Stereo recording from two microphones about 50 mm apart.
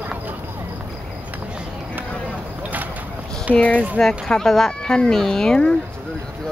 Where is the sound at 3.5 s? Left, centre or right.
Left.